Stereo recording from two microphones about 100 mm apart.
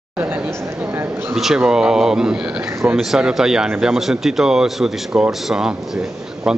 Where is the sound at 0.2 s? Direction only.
20° right (ahead or behind).